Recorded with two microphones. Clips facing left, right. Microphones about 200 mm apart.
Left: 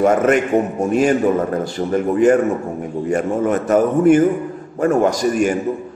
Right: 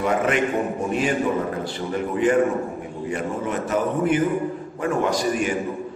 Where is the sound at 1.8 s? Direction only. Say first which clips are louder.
Left 9 dB; 45° left (ahead or behind).